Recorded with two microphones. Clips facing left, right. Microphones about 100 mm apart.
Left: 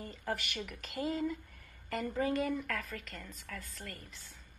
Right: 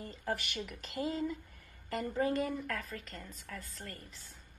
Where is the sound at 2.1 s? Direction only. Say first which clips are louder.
Even; 35° right (ahead or behind).